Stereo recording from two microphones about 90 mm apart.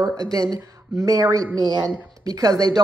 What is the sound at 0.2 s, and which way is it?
Speech, 40° right (ahead or behind).